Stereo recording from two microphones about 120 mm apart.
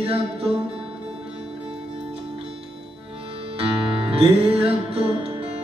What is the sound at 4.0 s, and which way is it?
Music, 50° right (ahead or behind).